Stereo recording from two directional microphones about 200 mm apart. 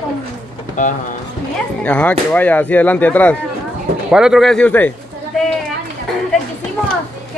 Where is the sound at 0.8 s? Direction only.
40° left (ahead or behind).